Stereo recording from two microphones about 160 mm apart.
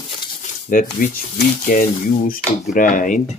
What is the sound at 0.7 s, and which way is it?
Rub, 60° left (ahead or behind).